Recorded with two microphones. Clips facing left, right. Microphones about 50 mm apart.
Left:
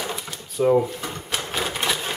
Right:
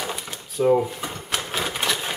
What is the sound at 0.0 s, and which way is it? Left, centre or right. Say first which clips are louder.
Cash register: even; centre.